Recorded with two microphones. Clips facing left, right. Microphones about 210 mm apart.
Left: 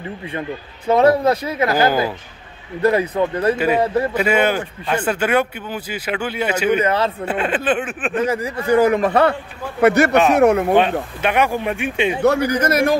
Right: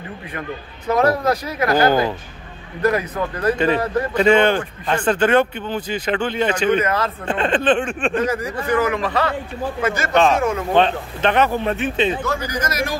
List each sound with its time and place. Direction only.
0.3 s a man's voice: 25° left (ahead or behind)
1.7 s speech: 10° left (ahead or behind)
2.8 s a man's voice: 30° left (ahead or behind)
3.5 s speech: 5° left (ahead or behind)
3.8 s a man's voice: 30° left (ahead or behind)
4.1 s speech: 10° left (ahead or behind)
6.8 s a man's voice: 30° left (ahead or behind)
7.2 s speech: 10° left (ahead or behind)
8.3 s a man's voice: 25° left (ahead or behind)
9.0 s a man's voice: 55° left (ahead or behind)
9.8 s speech: 65° left (ahead or behind)
10.7 s speech: 10° left (ahead or behind)
12.2 s speech: 65° left (ahead or behind)